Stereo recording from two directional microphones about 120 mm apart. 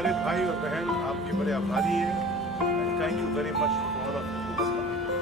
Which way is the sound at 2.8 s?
Centre (ahead or behind).